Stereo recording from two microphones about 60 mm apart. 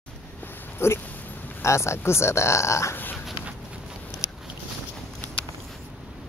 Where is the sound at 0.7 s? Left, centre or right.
Left.